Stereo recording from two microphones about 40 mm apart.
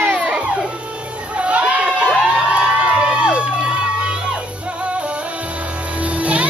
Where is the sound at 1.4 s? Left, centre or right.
Right.